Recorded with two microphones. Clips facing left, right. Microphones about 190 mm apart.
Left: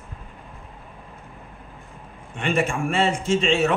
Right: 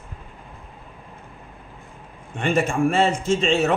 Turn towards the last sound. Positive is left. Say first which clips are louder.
# right 1 dB
turn(degrees=-40)  # may be behind; listen again after turning